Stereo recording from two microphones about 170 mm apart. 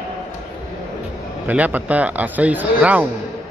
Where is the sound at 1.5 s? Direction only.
10° right (ahead or behind).